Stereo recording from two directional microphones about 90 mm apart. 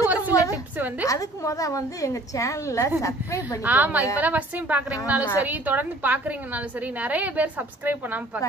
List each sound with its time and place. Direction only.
0.3 s a sound: 40° left (ahead or behind)
1.0 s a woman's voice: 40° left (ahead or behind)
3.6 s a woman's voice: 20° right (ahead or behind)